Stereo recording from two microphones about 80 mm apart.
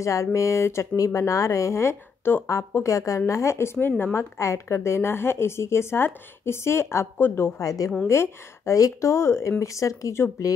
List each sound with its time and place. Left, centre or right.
0.0 s speech: left
7.6 s a woman's voice: left